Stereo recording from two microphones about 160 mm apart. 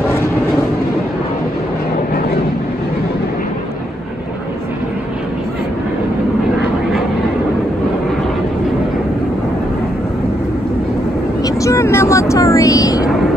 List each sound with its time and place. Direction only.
11.4 s vehicle: 20° left (ahead or behind)